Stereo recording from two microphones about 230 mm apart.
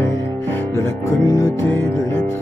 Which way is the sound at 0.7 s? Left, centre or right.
Centre.